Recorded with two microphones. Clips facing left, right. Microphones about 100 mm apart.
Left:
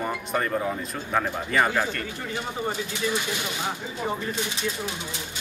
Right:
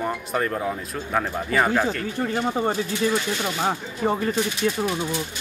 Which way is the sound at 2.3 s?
45° right (ahead or behind).